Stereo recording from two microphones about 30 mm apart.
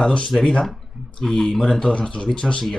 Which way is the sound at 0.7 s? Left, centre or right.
Centre.